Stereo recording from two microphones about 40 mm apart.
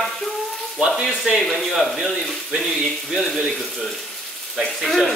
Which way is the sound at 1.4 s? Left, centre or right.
Centre.